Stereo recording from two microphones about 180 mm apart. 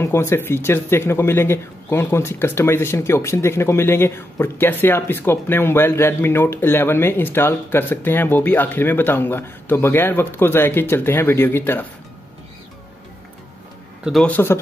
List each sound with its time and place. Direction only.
0.0 s a man's voice: 15° left (ahead or behind)
14.0 s a man's voice: 5° left (ahead or behind)